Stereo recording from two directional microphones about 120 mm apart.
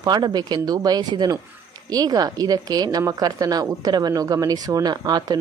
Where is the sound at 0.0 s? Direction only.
35° right (ahead or behind).